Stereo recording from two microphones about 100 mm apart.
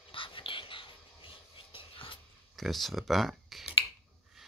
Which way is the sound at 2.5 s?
Centre (ahead or behind).